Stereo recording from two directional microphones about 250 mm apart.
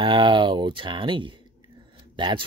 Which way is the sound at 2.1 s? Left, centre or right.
Centre.